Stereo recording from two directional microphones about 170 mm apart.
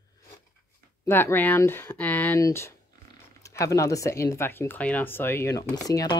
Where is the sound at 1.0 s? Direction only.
15° left (ahead or behind).